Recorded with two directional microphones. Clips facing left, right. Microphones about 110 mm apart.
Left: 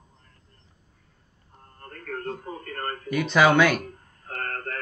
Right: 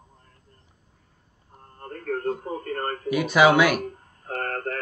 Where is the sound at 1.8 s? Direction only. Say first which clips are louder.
Right 6 dB; 30° right (ahead or behind).